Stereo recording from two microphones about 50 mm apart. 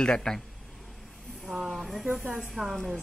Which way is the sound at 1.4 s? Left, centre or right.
Centre.